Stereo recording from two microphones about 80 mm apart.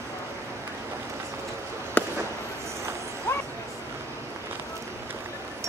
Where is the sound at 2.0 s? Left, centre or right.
Left.